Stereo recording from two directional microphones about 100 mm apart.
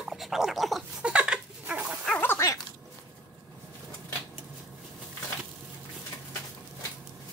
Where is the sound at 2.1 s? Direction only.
20° left (ahead or behind).